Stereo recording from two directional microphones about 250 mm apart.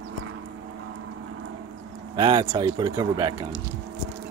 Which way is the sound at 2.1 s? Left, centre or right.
Centre.